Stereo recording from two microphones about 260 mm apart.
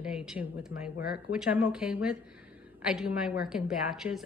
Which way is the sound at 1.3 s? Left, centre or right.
Centre.